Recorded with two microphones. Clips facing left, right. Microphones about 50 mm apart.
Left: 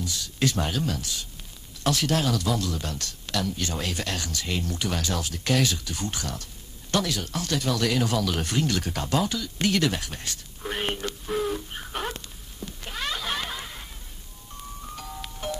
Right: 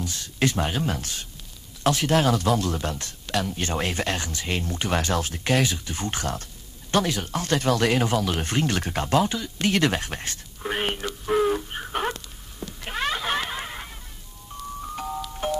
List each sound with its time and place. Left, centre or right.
0.0 s speech: right
0.8 s speech: right
2.2 s speech: right
2.9 s speech: right
5.4 s speech: right
9.8 s speech: right
10.6 s speech: right
11.2 s a sound: right
15.0 s music: right